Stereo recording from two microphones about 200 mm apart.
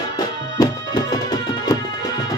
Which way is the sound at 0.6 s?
20° left (ahead or behind).